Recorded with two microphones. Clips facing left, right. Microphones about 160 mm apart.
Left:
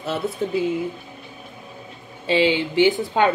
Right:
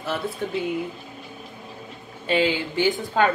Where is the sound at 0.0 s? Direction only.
25° left (ahead or behind).